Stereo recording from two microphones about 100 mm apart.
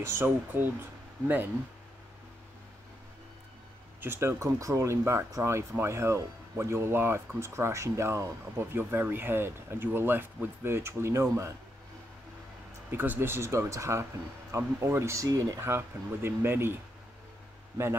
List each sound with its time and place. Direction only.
0.0 s speech: 25° right (ahead or behind)
4.0 s speech: 25° right (ahead or behind)
12.9 s speech: 20° right (ahead or behind)
15.7 s speech: 20° right (ahead or behind)